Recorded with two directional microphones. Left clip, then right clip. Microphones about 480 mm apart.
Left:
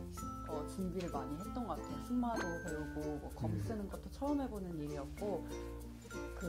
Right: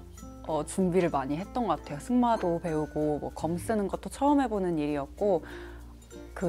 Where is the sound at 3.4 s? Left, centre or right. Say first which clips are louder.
Right 15 dB; right.